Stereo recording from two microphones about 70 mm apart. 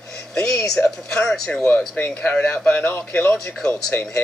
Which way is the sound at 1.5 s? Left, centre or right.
Centre.